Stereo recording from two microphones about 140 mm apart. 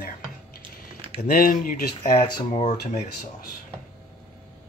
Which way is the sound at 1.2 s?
90° left.